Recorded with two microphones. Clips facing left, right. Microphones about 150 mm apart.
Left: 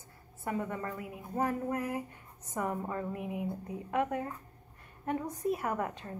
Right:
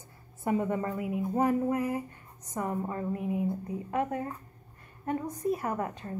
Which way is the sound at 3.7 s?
Centre (ahead or behind).